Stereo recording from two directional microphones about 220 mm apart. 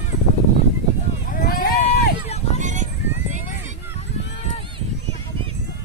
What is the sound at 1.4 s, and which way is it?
Run, 40° left (ahead or behind).